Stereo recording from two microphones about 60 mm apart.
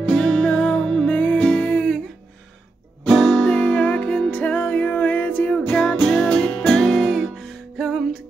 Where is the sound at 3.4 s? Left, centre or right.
Centre.